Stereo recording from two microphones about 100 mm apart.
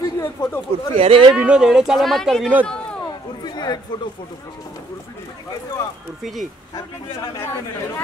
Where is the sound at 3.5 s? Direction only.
45° left (ahead or behind).